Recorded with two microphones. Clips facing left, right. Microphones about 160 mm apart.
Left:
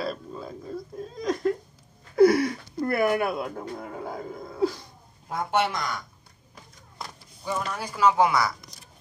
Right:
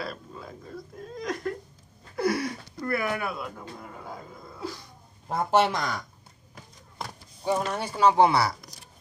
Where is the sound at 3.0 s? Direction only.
35° left (ahead or behind).